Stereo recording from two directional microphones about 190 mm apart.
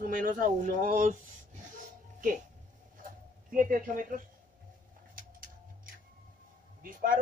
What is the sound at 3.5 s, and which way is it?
Speech, 45° right (ahead or behind).